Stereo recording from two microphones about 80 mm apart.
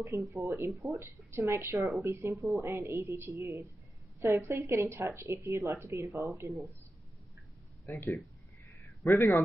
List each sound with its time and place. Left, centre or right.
0.3 s a woman's voice: right
7.8 s a man's voice: left